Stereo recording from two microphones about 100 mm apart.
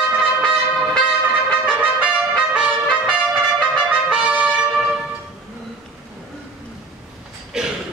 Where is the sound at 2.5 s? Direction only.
10° right (ahead or behind).